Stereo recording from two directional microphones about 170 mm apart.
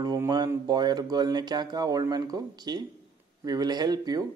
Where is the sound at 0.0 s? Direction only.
20° right (ahead or behind).